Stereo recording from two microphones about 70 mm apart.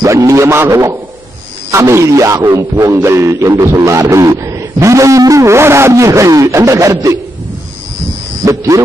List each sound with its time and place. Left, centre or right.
0.0 s a man's voice: right
8.5 s a man's voice: right